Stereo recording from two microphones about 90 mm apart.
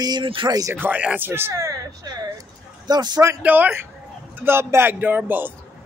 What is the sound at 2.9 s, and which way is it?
Speech, 50° right (ahead or behind).